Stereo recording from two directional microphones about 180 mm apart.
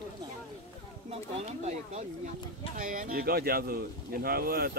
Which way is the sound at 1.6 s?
40° right (ahead or behind).